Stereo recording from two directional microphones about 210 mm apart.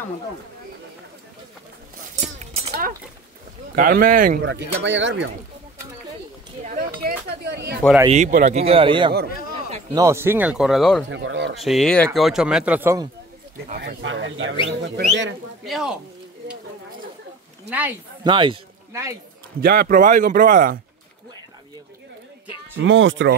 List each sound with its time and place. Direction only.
2.1 s a sound: 35° right (ahead or behind)
2.7 s speech: 40° right (ahead or behind)
4.5 s speech: 55° right (ahead or behind)
6.6 s chink: 35° right (ahead or behind)
8.1 s speech: 35° right (ahead or behind)
9.8 s speech: 15° right (ahead or behind)
11.1 s speech: 60° right (ahead or behind)
11.5 s speech: centre (ahead or behind)
13.8 s speech: 60° right (ahead or behind)
15.6 s speech: centre (ahead or behind)
17.6 s speech: 5° right (ahead or behind)
18.2 s a man's voice: 20° right (ahead or behind)
19.6 s speech: 45° right (ahead or behind)
22.8 s speech: 65° right (ahead or behind)